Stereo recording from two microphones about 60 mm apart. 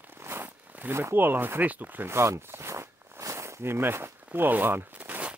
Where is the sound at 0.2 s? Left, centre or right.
Right.